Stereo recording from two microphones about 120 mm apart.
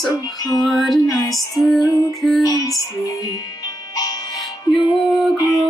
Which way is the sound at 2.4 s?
30° left (ahead or behind).